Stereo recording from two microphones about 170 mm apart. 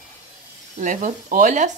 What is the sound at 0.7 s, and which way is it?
Speech, 50° right (ahead or behind).